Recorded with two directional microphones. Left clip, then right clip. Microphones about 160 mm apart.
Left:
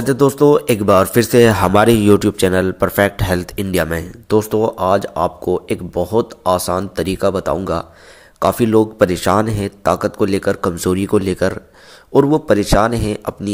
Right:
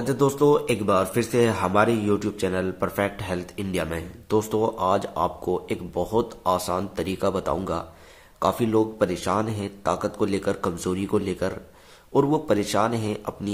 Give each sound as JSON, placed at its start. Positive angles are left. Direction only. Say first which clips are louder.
{"t": 0.0, "sound": "speech", "louder": "left 8 dB", "side_deg": 35}